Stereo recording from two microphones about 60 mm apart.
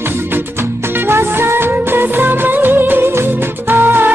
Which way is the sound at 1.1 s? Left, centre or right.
Right.